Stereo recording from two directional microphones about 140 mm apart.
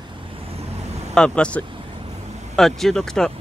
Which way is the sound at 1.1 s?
5° left (ahead or behind).